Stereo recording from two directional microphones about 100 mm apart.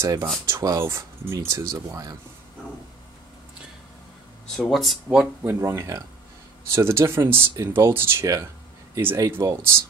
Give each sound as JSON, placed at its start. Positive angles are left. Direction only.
{"t": 0.0, "sound": "speech", "side_deg": -35}
{"t": 4.6, "sound": "speech", "side_deg": 0}
{"t": 5.5, "sound": "speech", "side_deg": -25}